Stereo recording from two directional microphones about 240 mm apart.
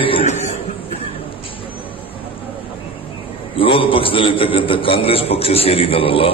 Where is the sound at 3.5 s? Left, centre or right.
Left.